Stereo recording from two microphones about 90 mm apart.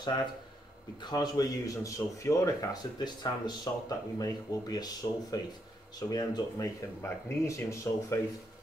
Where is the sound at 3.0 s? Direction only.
55° left (ahead or behind).